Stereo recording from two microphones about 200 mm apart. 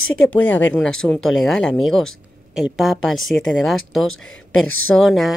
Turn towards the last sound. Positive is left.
turn(degrees=0)  # may be behind; listen again after turning